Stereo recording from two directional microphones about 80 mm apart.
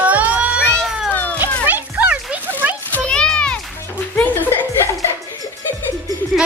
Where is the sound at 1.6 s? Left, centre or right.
Right.